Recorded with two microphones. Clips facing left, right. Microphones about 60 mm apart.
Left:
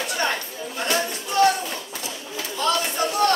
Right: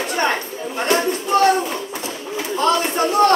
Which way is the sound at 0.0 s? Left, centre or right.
Right.